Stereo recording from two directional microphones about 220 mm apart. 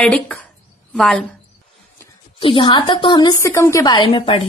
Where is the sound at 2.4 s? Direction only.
20° left (ahead or behind).